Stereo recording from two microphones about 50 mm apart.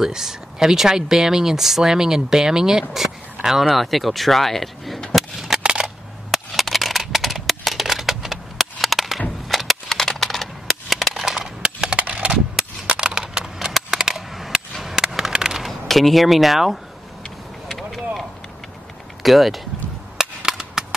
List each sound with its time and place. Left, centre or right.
0.0 s speech: centre
5.1 s cap gun: centre
5.6 s coin: centre
6.3 s a sound: centre
11.6 s a sound: right
13.8 s coin: centre
14.1 s a sound: centre
15.9 s speech: centre
17.6 s vehicle: centre
19.2 s speech: centre
20.2 s cap gun: centre